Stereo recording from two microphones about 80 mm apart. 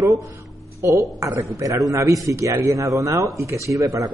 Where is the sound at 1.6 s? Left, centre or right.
Right.